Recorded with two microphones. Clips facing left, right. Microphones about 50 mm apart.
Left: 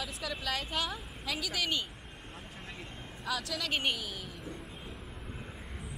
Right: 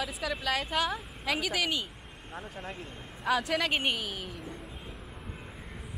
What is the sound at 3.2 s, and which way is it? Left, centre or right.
Speech, right.